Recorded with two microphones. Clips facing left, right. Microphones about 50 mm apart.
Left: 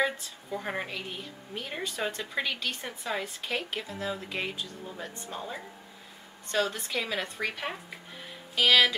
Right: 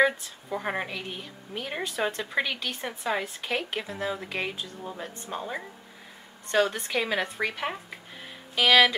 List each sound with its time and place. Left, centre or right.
0.5 s a woman's voice: centre
0.8 s a woman's voice: centre
6.5 s a woman's voice: right
7.3 s a woman's voice: centre